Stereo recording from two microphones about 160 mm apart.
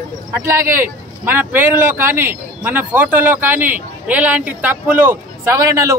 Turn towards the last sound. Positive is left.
turn(degrees=-20)  # may be behind; listen again after turning